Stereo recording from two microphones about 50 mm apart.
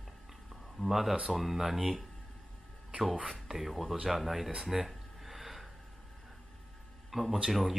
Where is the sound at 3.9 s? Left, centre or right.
Centre.